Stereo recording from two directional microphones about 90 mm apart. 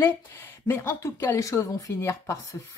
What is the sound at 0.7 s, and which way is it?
A woman's voice, 35° left (ahead or behind).